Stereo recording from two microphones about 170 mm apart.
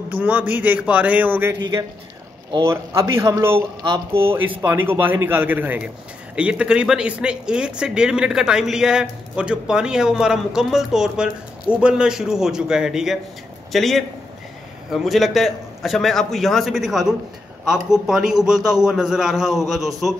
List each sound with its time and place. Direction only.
0.1 s speech: 10° right (ahead or behind)
2.6 s a man's voice: 15° right (ahead or behind)